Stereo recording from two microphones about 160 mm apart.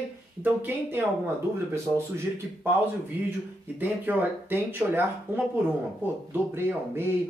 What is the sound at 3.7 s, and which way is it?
A man's voice, 10° right (ahead or behind).